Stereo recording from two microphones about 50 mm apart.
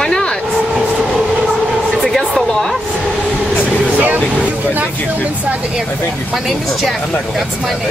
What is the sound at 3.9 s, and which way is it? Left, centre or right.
Vehicle, right.